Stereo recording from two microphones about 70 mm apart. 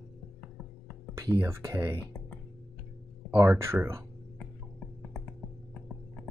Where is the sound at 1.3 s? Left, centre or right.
Right.